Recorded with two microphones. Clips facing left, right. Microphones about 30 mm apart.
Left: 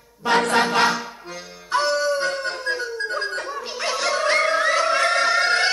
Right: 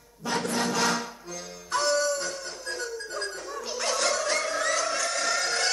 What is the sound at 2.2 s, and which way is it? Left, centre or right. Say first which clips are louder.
Howl: left 10 dB; left.